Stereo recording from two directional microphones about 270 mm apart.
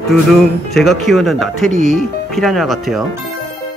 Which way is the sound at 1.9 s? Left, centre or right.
Centre.